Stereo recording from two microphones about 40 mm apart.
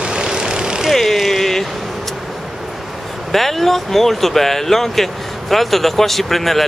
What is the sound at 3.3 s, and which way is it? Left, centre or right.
Speech, centre.